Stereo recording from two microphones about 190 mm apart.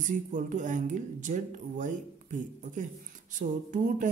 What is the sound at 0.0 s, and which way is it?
Speech, 40° right (ahead or behind).